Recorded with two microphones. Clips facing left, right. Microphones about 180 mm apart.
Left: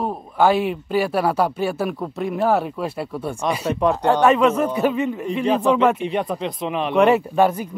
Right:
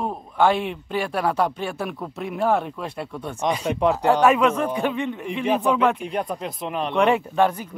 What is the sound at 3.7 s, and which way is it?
Speech, 10° right (ahead or behind).